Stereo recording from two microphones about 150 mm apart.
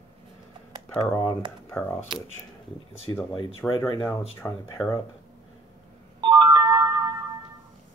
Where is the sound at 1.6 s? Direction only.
15° left (ahead or behind).